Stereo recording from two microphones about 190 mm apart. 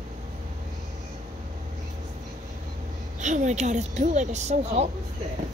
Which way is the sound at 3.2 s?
40° right (ahead or behind).